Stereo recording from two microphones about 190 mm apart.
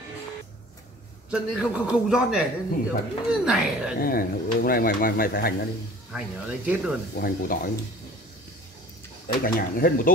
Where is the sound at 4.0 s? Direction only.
50° left (ahead or behind).